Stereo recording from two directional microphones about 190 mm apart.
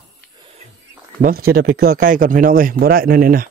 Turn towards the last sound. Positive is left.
turn(degrees=-50)  # may be behind; listen again after turning